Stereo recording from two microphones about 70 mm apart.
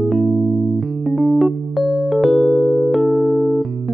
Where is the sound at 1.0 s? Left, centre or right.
Centre.